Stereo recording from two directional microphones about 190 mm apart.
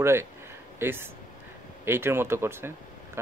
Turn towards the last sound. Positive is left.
turn(degrees=-10)  # may be behind; listen again after turning